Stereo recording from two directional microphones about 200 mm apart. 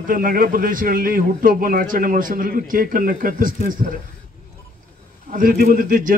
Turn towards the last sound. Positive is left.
turn(degrees=-45)  # may be behind; listen again after turning